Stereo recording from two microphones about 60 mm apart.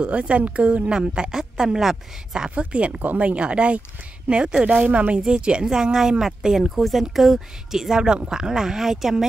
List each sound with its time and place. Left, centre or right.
0.0 s speech: right